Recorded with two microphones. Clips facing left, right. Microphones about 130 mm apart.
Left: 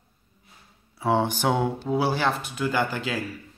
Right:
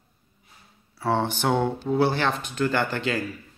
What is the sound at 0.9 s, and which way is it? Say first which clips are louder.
Speech: left 1 dB; 15° left (ahead or behind).